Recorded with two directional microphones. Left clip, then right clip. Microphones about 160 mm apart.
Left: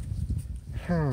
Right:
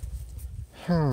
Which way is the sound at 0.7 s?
30° right (ahead or behind).